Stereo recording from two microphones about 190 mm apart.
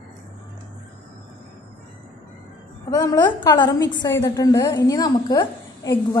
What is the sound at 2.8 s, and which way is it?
A woman's voice, 20° left (ahead or behind).